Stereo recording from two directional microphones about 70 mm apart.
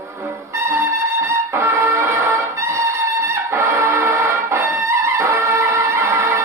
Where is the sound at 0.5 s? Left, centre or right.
Right.